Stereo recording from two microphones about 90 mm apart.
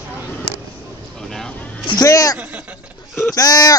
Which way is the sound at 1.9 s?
40° left (ahead or behind).